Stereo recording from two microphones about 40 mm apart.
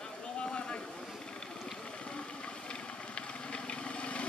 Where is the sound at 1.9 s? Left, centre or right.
Left.